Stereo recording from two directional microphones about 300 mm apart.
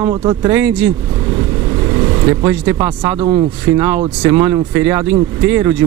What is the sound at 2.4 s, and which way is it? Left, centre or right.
Speech, centre.